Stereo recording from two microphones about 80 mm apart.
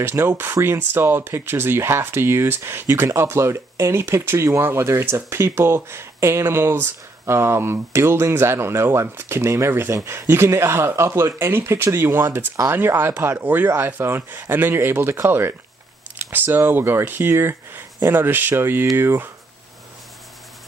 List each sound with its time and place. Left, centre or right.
0.0 s speech: right